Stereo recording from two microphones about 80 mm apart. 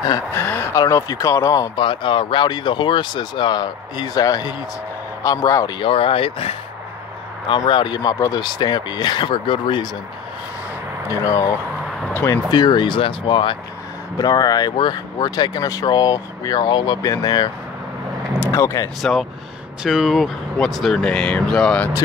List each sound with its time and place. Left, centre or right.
0.3 s speech: left
0.8 s speech: left
1.8 s speech: left
5.8 s speech: left
7.4 s speech: left
11.1 s speech: left
12.4 s speech: left
14.1 s speech: left
17.0 s speech: left
18.5 s speech: left
18.9 s speech: centre